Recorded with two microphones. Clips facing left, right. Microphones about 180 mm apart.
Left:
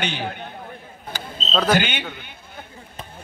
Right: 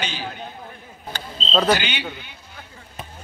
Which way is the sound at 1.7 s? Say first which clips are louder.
Left 1 dB; 50° left (ahead or behind).